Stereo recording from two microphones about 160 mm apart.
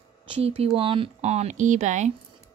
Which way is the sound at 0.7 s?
35° right (ahead or behind).